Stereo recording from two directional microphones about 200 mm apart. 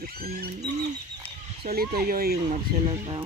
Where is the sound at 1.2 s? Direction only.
30° right (ahead or behind).